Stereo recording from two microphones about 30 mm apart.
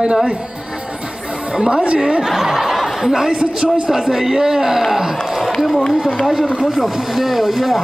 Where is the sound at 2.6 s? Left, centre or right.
Centre.